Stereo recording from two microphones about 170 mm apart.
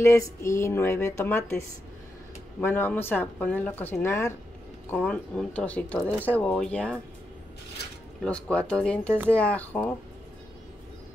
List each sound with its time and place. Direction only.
0.0 s speech: 15° left (ahead or behind)
2.6 s speech: 10° left (ahead or behind)
8.2 s speech: 5° left (ahead or behind)